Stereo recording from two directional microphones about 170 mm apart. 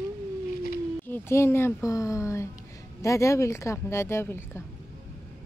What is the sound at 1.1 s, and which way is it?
Speech, 15° left (ahead or behind).